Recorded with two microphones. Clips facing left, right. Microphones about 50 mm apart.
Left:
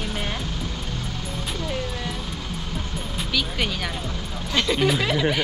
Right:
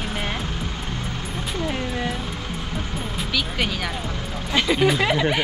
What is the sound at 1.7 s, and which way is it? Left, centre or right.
Music, right.